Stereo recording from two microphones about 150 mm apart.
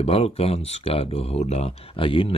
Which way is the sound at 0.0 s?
40° left (ahead or behind).